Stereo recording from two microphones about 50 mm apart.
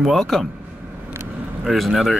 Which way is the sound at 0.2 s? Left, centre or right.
Centre.